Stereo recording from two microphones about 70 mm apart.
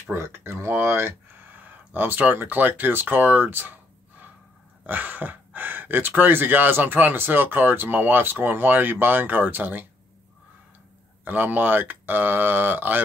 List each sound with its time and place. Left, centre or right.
0.1 s speech: right
11.2 s speech: right